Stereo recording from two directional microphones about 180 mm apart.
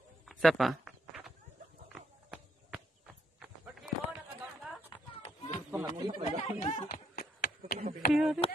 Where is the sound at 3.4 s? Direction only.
5° right (ahead or behind).